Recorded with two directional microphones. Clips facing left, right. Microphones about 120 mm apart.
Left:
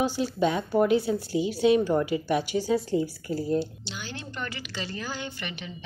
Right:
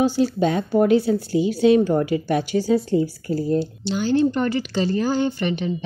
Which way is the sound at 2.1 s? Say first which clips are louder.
Right 5 dB; 65° right (ahead or behind).